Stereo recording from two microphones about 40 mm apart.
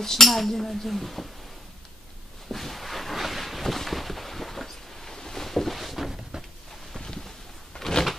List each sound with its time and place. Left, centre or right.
0.0 s speech: centre
2.5 s a sound: centre
7.7 s door: left